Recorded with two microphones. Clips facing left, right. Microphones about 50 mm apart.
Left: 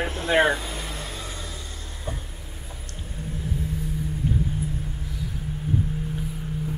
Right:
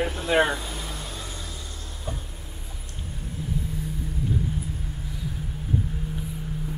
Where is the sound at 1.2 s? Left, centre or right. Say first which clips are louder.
Left 2 dB; centre.